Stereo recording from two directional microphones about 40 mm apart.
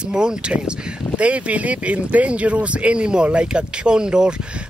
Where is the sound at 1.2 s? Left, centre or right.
Right.